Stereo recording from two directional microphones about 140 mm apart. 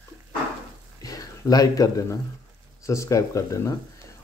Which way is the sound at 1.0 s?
25° left (ahead or behind).